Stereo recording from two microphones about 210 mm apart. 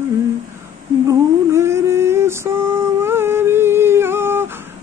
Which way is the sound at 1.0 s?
15° right (ahead or behind).